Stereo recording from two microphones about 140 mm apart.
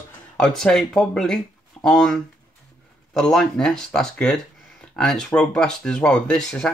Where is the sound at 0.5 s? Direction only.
5° left (ahead or behind).